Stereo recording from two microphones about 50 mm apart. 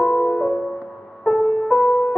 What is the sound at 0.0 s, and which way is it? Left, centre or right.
Music, centre.